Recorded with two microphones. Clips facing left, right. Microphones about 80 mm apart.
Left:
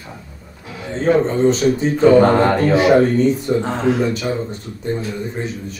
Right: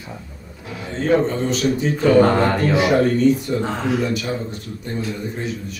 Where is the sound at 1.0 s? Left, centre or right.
Left.